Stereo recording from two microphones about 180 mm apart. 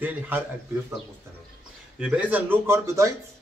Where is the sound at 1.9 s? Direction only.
5° right (ahead or behind).